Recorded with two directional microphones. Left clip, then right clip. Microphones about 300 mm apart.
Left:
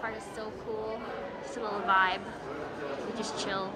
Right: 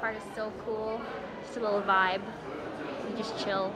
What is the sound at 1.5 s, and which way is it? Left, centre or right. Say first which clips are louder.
Speech: right 1 dB; centre.